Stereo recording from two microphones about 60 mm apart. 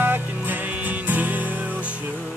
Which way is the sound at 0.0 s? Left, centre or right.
Right.